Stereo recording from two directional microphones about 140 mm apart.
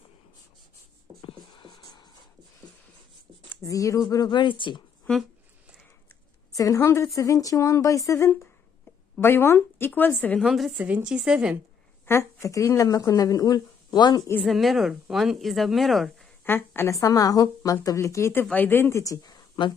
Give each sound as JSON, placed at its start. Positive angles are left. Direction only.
{"t": 1.2, "sound": "a sound", "side_deg": 35}
{"t": 3.4, "sound": "speech", "side_deg": 25}
{"t": 6.5, "sound": "speech", "side_deg": 25}
{"t": 10.4, "sound": "a woman's voice", "side_deg": 0}
{"t": 12.1, "sound": "speech", "side_deg": 20}
{"t": 14.4, "sound": "a woman's voice", "side_deg": 0}
{"t": 16.4, "sound": "speech", "side_deg": 15}